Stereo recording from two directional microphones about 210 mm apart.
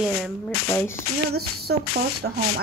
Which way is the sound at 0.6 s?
10° left (ahead or behind).